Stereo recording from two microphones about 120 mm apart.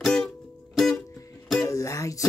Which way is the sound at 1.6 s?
25° left (ahead or behind).